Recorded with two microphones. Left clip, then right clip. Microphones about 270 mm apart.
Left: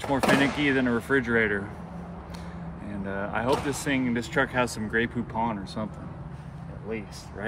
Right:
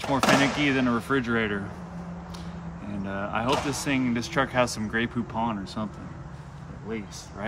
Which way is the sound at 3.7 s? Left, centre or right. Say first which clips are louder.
Even; right.